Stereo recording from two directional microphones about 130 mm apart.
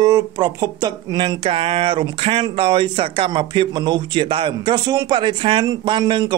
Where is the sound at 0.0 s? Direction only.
30° right (ahead or behind).